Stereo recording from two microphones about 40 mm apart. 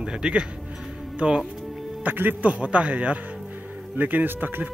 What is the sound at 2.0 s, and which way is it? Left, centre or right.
Speech, right.